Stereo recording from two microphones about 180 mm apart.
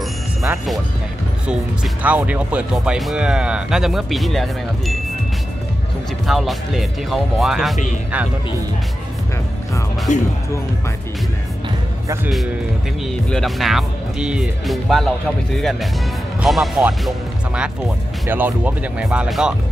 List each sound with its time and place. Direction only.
2.0 s speech: 10° right (ahead or behind)
6.2 s speech: centre (ahead or behind)
10.1 s speech: 40° left (ahead or behind)
13.0 s speech: centre (ahead or behind)
18.2 s speech: 10° right (ahead or behind)